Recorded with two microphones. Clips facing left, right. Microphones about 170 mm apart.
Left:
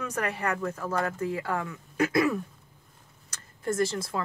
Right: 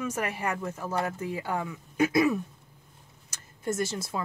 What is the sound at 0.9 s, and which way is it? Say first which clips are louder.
Speech: left 1 dB; 25° right (ahead or behind).